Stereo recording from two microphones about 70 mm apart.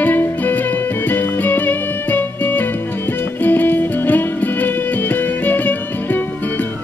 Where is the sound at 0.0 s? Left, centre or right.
Left.